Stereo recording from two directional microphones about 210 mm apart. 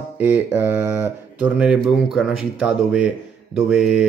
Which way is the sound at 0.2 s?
10° right (ahead or behind).